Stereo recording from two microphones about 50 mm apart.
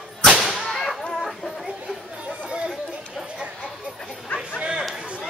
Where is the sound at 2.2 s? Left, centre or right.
Centre.